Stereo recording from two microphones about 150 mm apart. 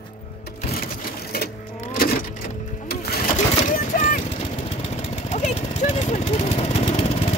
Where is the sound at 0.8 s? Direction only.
85° left.